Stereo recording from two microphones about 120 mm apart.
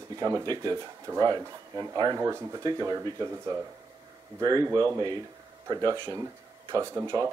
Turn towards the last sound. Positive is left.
turn(degrees=-25)  # may be behind; listen again after turning